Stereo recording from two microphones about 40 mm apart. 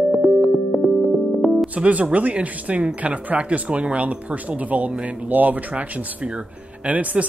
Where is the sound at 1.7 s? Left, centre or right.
Right.